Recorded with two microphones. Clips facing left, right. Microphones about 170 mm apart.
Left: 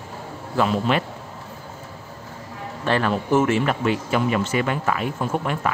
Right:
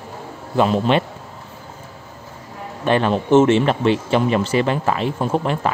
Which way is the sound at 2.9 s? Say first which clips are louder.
Right 5 dB; 20° right (ahead or behind).